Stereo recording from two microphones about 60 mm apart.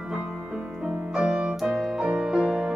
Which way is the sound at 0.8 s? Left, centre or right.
Centre.